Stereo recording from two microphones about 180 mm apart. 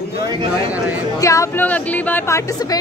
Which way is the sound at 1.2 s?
15° left (ahead or behind).